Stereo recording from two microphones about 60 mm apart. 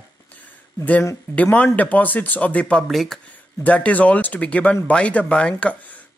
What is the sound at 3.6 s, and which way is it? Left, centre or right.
Speech, left.